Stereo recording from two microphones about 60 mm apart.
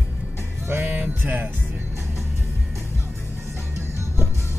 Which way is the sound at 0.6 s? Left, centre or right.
Right.